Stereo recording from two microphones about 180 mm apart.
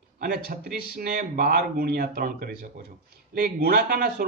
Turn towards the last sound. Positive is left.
turn(degrees=-55)  # may be behind; listen again after turning